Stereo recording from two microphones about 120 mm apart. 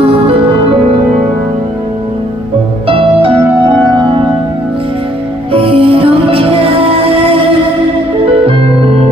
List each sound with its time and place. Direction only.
2.9 s music: 50° right (ahead or behind)
5.5 s music: 50° right (ahead or behind)
8.5 s music: 55° right (ahead or behind)